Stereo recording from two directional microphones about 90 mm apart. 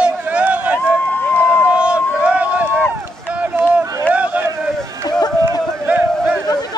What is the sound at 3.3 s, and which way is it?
Run, 15° right (ahead or behind).